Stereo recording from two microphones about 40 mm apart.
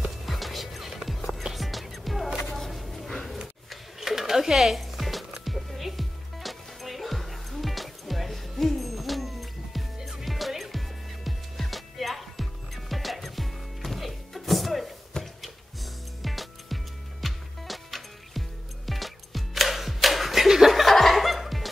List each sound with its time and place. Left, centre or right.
0.2 s music: centre
2.4 s a sound: centre
4.0 s music: centre
9.9 s music: centre
10.2 s music: centre
20.8 s laughter: centre